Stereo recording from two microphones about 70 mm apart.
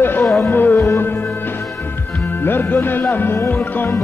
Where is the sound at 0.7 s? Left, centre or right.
Left.